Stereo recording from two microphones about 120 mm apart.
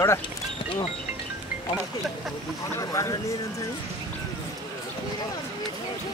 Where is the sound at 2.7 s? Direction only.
25° left (ahead or behind).